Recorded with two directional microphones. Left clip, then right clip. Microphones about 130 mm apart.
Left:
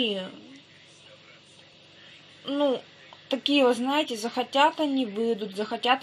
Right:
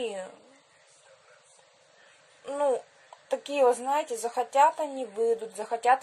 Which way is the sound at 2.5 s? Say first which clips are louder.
Left 1 dB; 30° right (ahead or behind).